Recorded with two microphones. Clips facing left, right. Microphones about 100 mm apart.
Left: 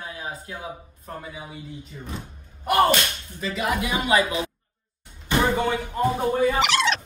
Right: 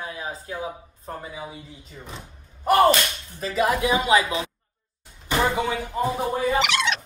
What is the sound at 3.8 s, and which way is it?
Speech, 30° right (ahead or behind).